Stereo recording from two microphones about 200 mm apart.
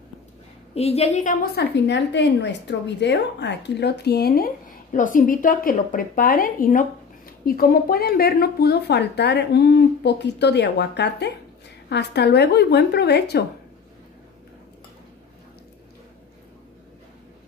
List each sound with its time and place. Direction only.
0.7 s speech: 30° left (ahead or behind); by 4.5 s 50° left (ahead or behind)
4.9 s a woman's voice: 40° left (ahead or behind)